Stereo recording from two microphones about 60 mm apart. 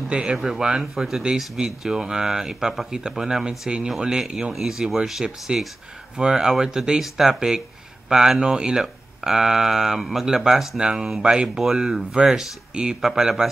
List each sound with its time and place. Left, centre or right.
0.1 s speech: centre